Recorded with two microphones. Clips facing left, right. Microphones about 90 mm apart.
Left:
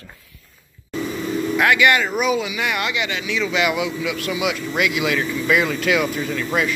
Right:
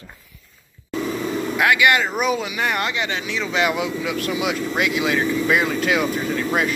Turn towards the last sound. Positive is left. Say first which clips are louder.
# right 1 dB
turn(degrees=-40)  # may be behind; listen again after turning